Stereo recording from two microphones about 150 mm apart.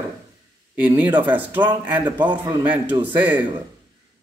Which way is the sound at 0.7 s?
10° right (ahead or behind).